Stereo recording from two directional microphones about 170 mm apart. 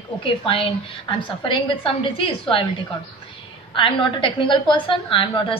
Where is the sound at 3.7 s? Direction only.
30° left (ahead or behind).